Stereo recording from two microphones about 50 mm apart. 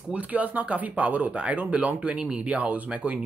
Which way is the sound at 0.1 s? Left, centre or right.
Right.